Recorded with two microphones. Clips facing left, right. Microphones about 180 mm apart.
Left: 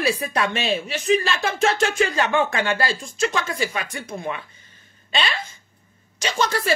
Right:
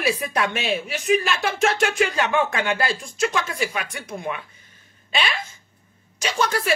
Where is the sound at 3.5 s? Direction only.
10° right (ahead or behind).